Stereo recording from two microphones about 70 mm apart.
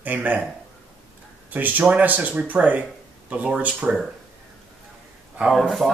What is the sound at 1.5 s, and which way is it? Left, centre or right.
Speech, right.